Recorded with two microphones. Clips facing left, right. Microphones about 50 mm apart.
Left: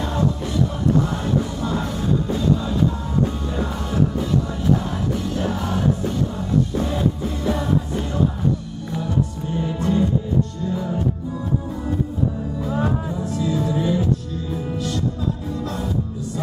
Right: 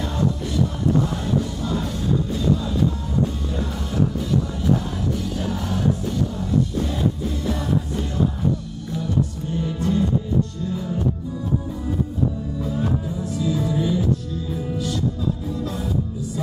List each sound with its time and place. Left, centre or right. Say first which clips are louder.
0.0 s music: left 1 dB; centre
13.4 s music: even; centre
14.5 s music: left 1 dB; centre